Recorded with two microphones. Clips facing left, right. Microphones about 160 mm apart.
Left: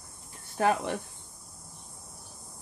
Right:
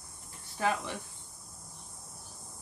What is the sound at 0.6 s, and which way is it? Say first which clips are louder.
Speech: left 5 dB; 55° left (ahead or behind).